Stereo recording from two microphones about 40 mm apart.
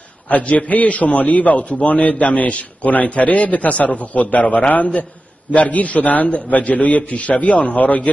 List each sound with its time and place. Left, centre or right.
0.3 s a man's voice: left